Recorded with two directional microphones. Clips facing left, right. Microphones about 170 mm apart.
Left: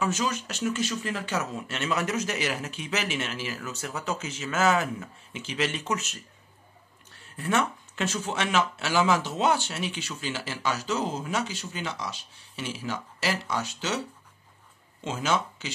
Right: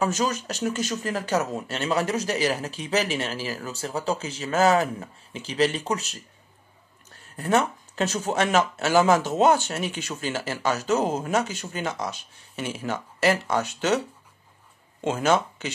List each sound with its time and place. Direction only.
0.0 s speech: 40° right (ahead or behind)
7.3 s speech: 40° right (ahead or behind)
15.0 s speech: 50° right (ahead or behind)